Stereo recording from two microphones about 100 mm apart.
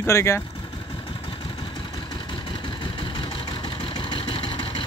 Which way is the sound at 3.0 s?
55° left (ahead or behind).